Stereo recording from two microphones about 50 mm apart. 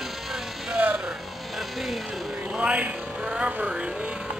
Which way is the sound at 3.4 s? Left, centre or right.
Right.